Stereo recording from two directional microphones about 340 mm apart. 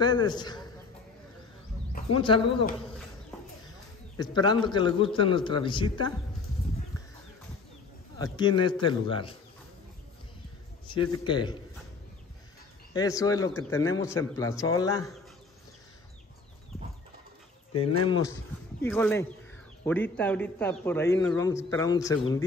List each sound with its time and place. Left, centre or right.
0.0 s a man's voice: centre
2.1 s a man's voice: centre
4.2 s a man's voice: centre
8.2 s a man's voice: centre
10.9 s a man's voice: centre
12.9 s a man's voice: centre
17.7 s speech: left
18.8 s a man's voice: centre